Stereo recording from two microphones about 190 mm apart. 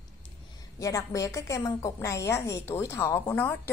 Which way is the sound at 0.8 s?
15° left (ahead or behind).